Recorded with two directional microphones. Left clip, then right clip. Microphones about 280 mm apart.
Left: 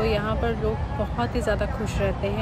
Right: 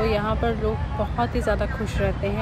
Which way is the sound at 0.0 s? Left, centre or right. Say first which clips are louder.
Right 1 dB; centre.